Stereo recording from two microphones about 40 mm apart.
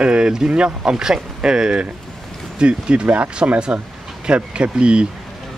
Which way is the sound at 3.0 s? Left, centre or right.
Right.